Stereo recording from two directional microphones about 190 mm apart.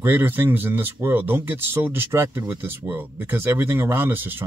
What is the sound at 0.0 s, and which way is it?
Speech, 10° right (ahead or behind).